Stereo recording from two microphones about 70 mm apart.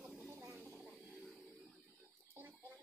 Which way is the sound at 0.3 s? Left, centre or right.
Right.